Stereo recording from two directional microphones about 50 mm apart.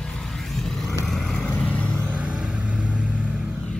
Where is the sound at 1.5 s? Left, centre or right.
Left.